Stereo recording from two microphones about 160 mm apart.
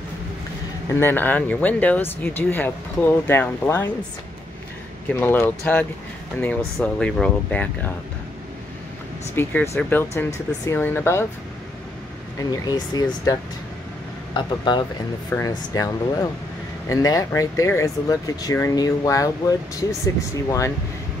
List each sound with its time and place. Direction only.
0.9 s speech: 15° left (ahead or behind)
5.1 s speech: 15° left (ahead or behind)
9.3 s speech: 15° left (ahead or behind)
12.4 s speech: 25° left (ahead or behind)